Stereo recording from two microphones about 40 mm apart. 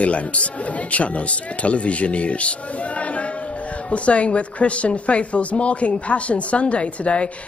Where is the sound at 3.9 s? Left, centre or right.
Left.